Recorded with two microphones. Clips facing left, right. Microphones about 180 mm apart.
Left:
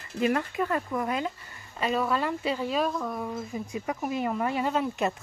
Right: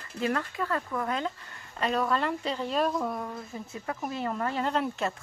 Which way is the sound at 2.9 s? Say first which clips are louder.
Right 1 dB; 10° right (ahead or behind).